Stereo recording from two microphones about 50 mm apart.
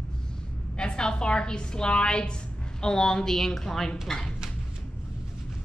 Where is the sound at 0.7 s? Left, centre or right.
Centre.